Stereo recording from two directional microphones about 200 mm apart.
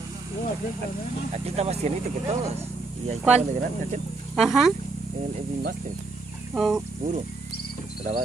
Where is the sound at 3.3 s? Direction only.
35° right (ahead or behind).